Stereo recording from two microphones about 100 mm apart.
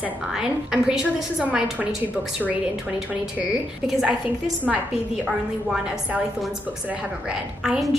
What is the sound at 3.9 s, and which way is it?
Speech, 5° right (ahead or behind).